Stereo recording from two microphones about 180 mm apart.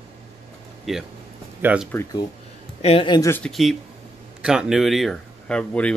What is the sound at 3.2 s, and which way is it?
Speech, 10° left (ahead or behind).